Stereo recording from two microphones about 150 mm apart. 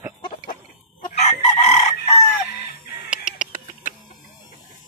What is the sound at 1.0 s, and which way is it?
Chicken, 50° left (ahead or behind).